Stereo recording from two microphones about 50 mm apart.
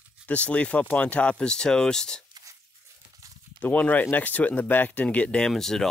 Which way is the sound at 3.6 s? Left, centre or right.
Left.